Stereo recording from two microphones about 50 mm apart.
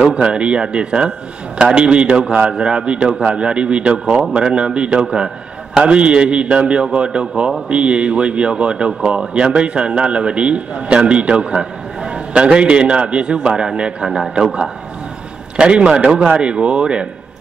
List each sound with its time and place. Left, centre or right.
0.1 s a man's voice: right
14.0 s a man's voice: centre
14.3 s a man's voice: centre